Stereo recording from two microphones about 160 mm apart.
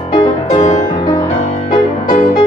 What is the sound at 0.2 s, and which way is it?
Music, 35° left (ahead or behind).